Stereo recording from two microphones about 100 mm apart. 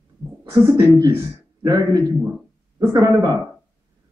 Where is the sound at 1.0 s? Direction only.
35° right (ahead or behind).